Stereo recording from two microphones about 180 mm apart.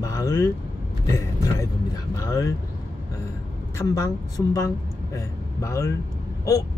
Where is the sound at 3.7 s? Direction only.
15° left (ahead or behind).